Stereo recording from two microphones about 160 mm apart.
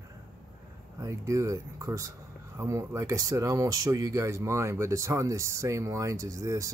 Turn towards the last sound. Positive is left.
turn(degrees=-20)  # may be behind; listen again after turning